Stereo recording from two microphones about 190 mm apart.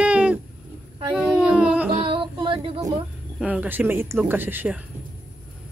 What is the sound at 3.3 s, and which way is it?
Speech, 5° right (ahead or behind).